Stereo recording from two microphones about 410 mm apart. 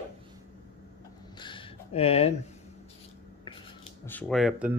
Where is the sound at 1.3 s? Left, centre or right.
Centre.